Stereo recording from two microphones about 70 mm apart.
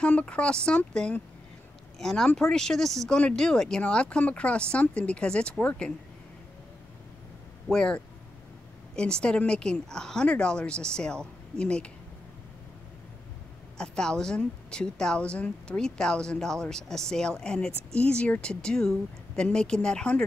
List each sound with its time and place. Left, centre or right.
0.0 s a woman's voice: centre
7.7 s a woman's voice: centre
13.7 s a woman's voice: centre